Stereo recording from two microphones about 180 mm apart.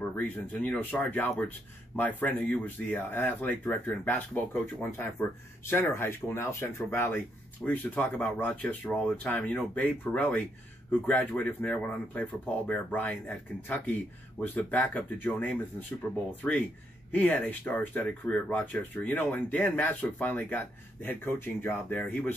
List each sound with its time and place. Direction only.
0.2 s speech: 5° left (ahead or behind)
14.4 s speech: 10° left (ahead or behind)